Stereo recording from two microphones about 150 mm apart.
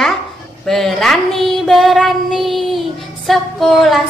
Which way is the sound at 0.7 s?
Centre (ahead or behind).